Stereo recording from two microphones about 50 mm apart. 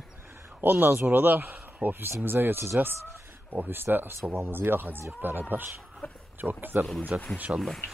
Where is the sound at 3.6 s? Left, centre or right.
Right.